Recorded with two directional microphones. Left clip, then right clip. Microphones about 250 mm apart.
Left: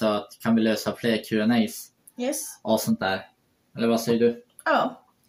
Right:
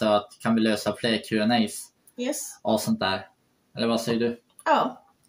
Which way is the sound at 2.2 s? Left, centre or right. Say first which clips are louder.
Left 1 dB; right.